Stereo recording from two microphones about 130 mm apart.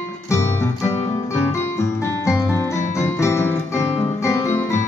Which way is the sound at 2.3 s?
20° left (ahead or behind).